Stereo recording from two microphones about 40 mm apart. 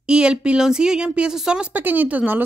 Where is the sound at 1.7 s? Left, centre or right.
Right.